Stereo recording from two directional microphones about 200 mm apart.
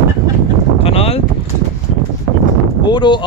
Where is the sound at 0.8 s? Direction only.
30° left (ahead or behind).